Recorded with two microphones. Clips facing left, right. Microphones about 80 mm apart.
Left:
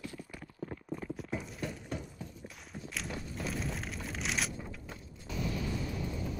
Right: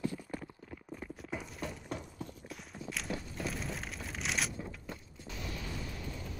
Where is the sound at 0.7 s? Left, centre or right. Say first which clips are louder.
Left 5 dB; centre.